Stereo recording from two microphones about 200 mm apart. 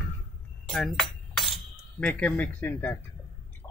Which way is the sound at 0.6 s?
5° left (ahead or behind).